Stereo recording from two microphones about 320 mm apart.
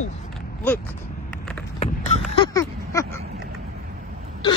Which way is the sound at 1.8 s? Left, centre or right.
Centre.